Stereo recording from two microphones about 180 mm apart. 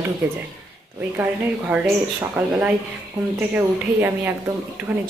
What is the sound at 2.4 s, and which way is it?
A woman's voice, 10° right (ahead or behind).